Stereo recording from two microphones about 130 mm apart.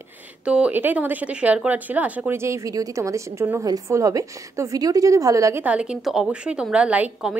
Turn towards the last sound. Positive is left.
turn(degrees=-5)  # may be behind; listen again after turning